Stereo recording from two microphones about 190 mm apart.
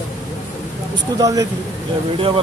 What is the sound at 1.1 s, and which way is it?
Speech, 20° right (ahead or behind).